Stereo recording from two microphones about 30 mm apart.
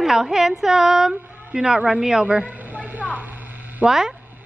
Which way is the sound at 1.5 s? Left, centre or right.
Right.